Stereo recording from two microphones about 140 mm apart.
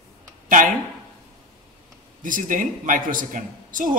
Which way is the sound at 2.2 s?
70° right (ahead or behind).